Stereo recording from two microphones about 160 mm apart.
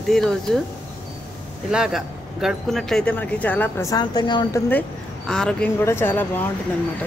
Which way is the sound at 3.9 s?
25° left (ahead or behind).